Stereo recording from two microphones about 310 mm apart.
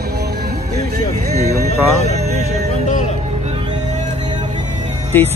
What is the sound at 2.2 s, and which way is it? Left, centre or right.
Music, right.